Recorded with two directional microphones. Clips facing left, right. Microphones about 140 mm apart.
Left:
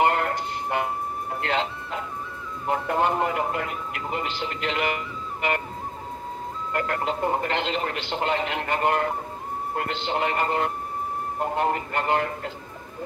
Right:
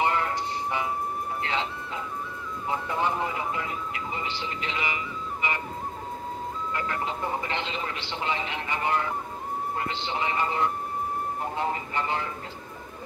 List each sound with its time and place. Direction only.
0.0 s music: 60° left (ahead or behind)
1.4 s speech: 65° left (ahead or behind)
6.7 s speech: 60° left (ahead or behind)